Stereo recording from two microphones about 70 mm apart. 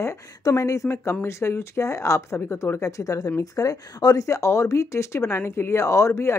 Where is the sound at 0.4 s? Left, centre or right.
Left.